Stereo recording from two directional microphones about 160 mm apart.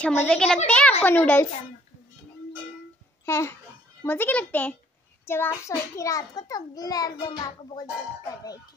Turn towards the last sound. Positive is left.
turn(degrees=25)  # may be behind; listen again after turning